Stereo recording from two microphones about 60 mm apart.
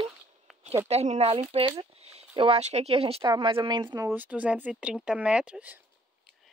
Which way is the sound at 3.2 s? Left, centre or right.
Right.